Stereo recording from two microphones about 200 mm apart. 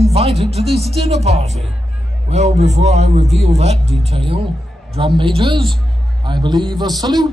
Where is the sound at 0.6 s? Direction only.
Centre (ahead or behind).